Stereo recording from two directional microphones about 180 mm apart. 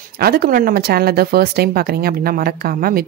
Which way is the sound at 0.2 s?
60° right (ahead or behind).